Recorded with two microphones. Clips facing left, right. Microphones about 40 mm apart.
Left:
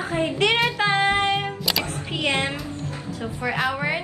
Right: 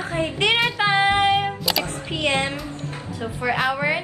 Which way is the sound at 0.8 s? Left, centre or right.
Centre.